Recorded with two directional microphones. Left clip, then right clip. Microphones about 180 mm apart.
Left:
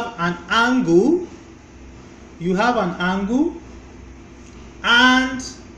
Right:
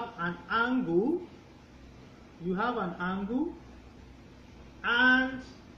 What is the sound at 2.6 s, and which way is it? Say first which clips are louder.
Speech: left 13 dB; 20° left (ahead or behind).